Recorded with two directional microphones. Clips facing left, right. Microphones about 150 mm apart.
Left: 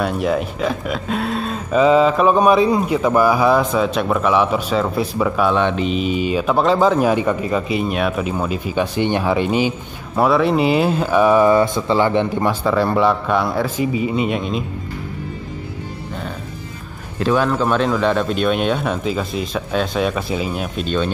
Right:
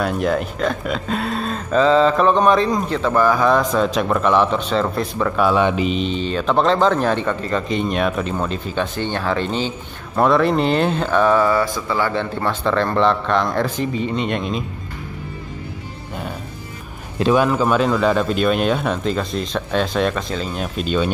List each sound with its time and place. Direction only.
0.0 s speech: centre (ahead or behind)
17.2 s speech: 15° right (ahead or behind)
17.5 s speech: 5° right (ahead or behind)